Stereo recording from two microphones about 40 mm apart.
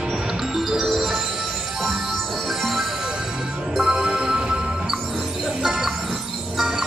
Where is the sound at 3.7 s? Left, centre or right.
Centre.